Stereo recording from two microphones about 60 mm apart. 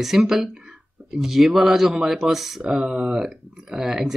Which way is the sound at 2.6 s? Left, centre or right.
Centre.